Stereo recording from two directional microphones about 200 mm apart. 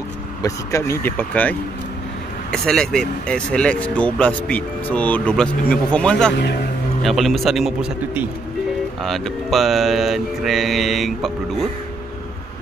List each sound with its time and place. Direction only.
0.4 s speech: 15° left (ahead or behind); by 7.9 s centre (ahead or behind)
9.0 s speech: centre (ahead or behind)